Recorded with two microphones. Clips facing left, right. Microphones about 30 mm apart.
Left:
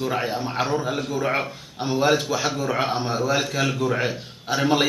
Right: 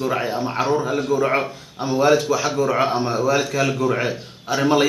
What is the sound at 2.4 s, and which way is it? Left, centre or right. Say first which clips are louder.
A man's voice: right 4 dB; centre.